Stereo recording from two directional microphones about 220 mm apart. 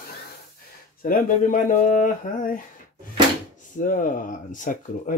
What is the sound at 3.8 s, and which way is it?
Speech, 40° left (ahead or behind).